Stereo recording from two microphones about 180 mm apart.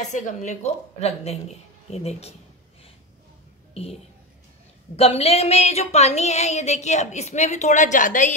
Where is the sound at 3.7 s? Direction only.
35° left (ahead or behind).